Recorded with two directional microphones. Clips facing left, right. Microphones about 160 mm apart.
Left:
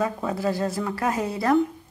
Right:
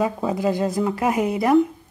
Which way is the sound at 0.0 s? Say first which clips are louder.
Right 4 dB; 20° right (ahead or behind).